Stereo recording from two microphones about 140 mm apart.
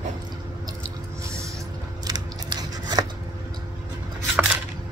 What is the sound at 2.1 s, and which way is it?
Scissors, 30° right (ahead or behind).